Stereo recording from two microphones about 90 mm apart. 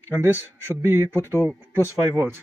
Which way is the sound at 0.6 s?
25° right (ahead or behind).